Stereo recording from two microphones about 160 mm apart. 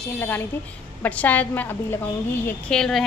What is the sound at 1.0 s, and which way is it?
A woman's voice, 10° left (ahead or behind).